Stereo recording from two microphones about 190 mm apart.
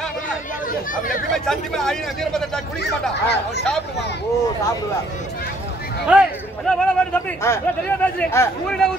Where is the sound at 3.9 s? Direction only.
60° left (ahead or behind).